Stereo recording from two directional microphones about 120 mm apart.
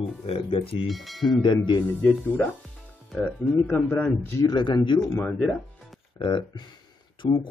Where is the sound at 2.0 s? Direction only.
10° left (ahead or behind).